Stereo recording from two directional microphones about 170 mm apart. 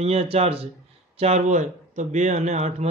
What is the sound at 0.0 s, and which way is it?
Speech, 35° right (ahead or behind).